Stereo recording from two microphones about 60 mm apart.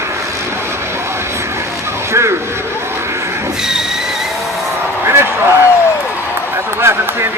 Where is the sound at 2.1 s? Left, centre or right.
Right.